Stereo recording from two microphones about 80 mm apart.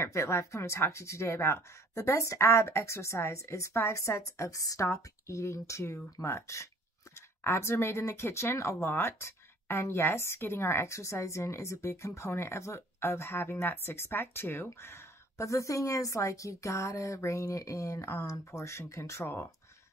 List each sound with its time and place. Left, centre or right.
0.0 s speech: left